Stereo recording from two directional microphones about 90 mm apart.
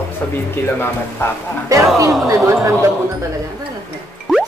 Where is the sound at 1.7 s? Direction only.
35° right (ahead or behind).